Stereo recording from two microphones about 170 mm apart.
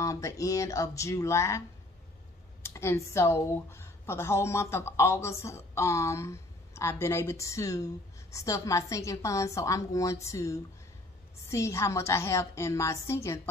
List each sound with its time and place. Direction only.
0.0 s speech: 20° left (ahead or behind)
2.6 s speech: 15° left (ahead or behind)